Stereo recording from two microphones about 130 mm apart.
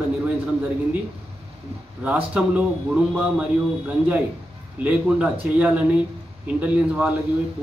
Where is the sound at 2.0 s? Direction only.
10° right (ahead or behind).